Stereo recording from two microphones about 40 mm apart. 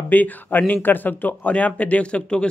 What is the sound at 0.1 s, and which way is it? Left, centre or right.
Speech, left.